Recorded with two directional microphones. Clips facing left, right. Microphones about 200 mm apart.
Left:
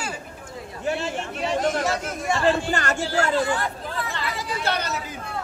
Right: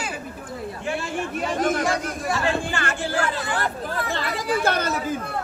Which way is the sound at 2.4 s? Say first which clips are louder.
Left 5 dB; 40° left (ahead or behind).